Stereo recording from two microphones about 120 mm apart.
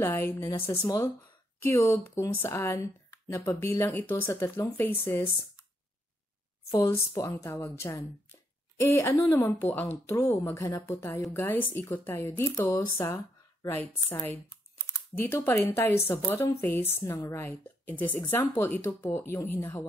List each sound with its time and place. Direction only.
0.0 s speech: 20° left (ahead or behind)
6.7 s a woman's voice: 20° left (ahead or behind)